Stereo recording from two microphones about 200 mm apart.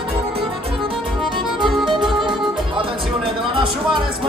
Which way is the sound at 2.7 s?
25° right (ahead or behind).